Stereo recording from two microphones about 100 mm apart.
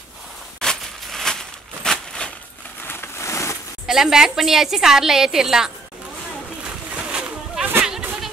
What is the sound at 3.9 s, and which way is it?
A woman's voice, 5° right (ahead or behind).